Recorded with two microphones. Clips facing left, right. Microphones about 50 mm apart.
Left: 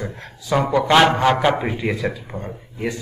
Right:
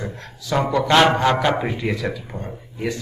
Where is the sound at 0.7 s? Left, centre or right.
Centre.